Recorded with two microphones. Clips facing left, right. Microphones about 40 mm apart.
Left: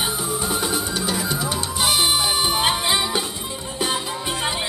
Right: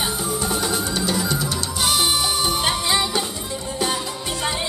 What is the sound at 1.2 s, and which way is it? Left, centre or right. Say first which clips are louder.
Music: even; centre.